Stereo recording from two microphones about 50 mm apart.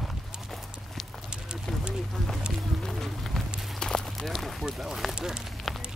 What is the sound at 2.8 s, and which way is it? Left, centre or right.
Run, centre.